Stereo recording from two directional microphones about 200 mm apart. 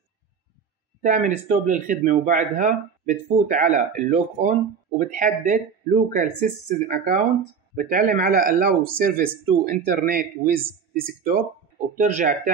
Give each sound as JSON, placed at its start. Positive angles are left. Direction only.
{"t": 1.0, "sound": "speech", "side_deg": -40}